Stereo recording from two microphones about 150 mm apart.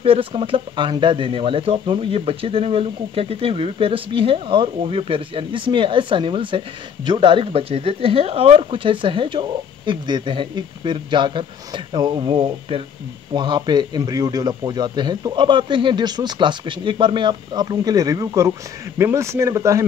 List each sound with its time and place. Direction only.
0.0 s speech: 40° right (ahead or behind); by 19.8 s 20° right (ahead or behind)